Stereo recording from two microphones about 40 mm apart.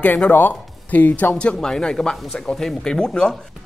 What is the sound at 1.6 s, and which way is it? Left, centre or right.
A man's voice, centre.